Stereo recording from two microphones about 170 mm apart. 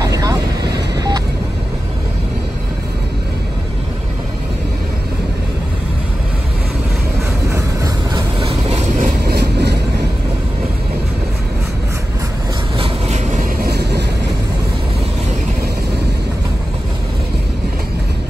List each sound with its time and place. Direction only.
0.0 s vehicle: 20° right (ahead or behind)
7.4 s vehicle: 20° right (ahead or behind)
8.4 s vehicle: 35° right (ahead or behind)
9.0 s vehicle: 65° right (ahead or behind)
12.7 s vehicle: 35° right (ahead or behind)
13.6 s vehicle: 70° right (ahead or behind)